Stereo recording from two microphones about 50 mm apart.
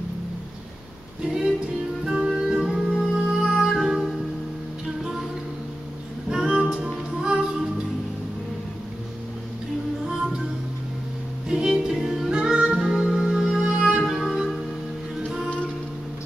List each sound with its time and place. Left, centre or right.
2.0 s music: centre
6.3 s music: centre
11.4 s music: centre
14.0 s music: centre